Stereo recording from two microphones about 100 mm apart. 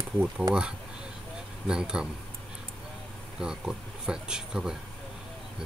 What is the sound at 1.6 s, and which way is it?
Speech, 5° right (ahead or behind).